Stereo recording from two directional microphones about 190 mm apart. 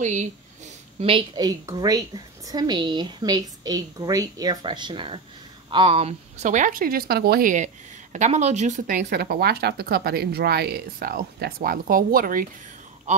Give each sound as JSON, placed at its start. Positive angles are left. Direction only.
{"t": 0.0, "sound": "speech", "side_deg": -40}
{"t": 1.0, "sound": "a woman's voice", "side_deg": -25}